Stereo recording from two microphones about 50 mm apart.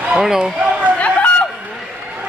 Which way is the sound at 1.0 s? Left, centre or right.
Left.